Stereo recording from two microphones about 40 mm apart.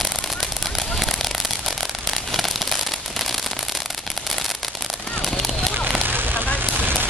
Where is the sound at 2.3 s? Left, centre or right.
Centre.